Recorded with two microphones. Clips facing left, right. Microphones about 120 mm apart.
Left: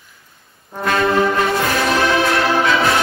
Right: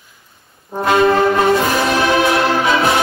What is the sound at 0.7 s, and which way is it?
Brass instrument, 25° right (ahead or behind).